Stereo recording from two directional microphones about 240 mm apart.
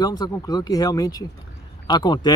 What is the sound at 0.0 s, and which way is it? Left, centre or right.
Speech, centre.